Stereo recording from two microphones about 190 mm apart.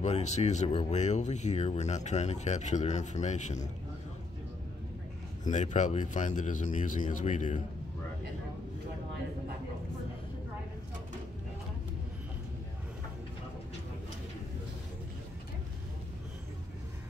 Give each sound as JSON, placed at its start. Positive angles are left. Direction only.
{"t": 0.0, "sound": "speech", "side_deg": 35}
{"t": 5.5, "sound": "speech", "side_deg": 40}